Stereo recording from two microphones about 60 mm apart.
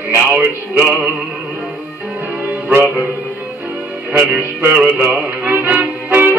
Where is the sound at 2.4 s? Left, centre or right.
Right.